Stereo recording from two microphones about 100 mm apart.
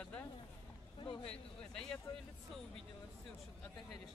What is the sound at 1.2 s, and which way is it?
Speech, 5° left (ahead or behind).